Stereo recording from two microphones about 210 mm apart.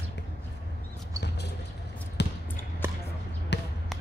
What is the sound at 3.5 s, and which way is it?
Basketball bounce, 55° left (ahead or behind).